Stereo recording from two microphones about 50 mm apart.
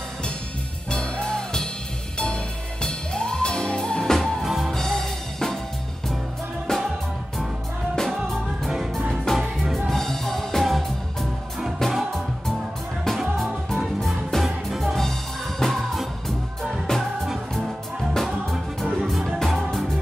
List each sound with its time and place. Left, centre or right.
0.9 s music: centre
2.8 s music: centre
4.4 s music: centre
4.7 s drum kit: centre
6.7 s music: centre
7.9 s music: centre
13.4 s music: centre
18.4 s music: centre